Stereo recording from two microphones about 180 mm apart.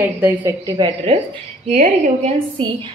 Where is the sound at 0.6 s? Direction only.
25° right (ahead or behind).